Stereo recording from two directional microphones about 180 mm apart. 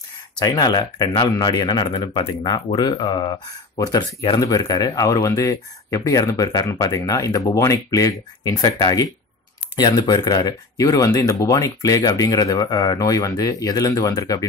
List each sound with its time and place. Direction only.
0.4 s speech: 20° left (ahead or behind)